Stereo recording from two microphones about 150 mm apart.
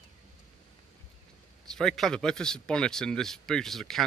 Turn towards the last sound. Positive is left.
turn(degrees=0)  # may be behind; listen again after turning